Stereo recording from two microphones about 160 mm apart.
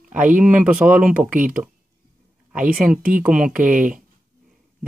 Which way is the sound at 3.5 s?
55° right (ahead or behind).